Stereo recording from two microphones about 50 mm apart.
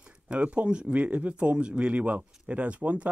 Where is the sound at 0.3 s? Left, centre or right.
Right.